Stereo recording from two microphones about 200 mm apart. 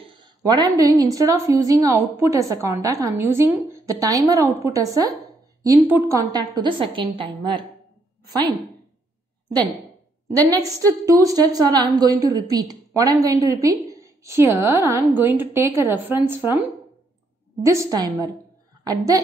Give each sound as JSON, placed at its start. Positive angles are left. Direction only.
{"t": 0.0, "sound": "a woman's voice", "side_deg": -25}
{"t": 10.2, "sound": "a woman's voice", "side_deg": -15}
{"t": 17.6, "sound": "a woman's voice", "side_deg": -15}